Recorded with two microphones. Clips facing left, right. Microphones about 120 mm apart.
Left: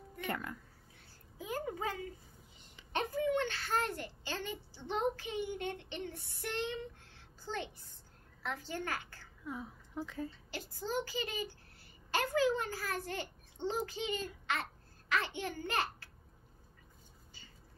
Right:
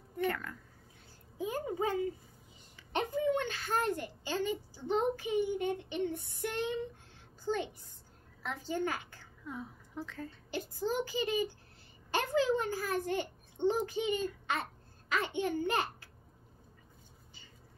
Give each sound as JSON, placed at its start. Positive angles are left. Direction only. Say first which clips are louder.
{"t": 0.3, "sound": "speech", "louder": "right 1 dB", "side_deg": 15}
{"t": 1.4, "sound": "a child's voice", "louder": "right 4 dB", "side_deg": -20}
{"t": 9.5, "sound": "a woman's voice", "louder": "even", "side_deg": 5}
{"t": 10.5, "sound": "a child's voice", "louder": "right 5 dB", "side_deg": -20}